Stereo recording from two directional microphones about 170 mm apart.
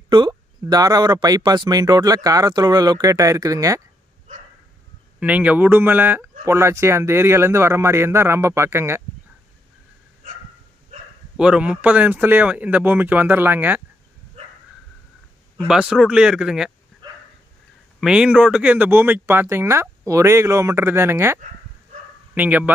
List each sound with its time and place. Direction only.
0.1 s speech: 25° right (ahead or behind)
5.2 s speech: 10° right (ahead or behind)
11.3 s speech: 5° right (ahead or behind)
15.6 s speech: 5° right (ahead or behind)
17.0 s dog: 25° right (ahead or behind)
18.0 s speech: 5° right (ahead or behind)